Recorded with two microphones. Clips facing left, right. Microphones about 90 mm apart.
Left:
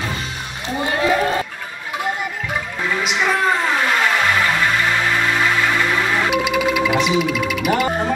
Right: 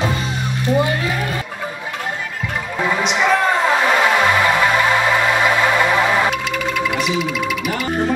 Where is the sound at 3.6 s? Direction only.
20° right (ahead or behind).